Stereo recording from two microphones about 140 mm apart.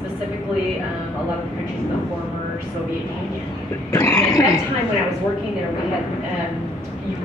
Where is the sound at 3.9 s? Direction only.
20° left (ahead or behind).